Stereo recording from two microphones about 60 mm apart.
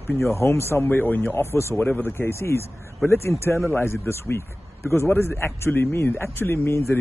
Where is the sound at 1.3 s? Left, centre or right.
Left.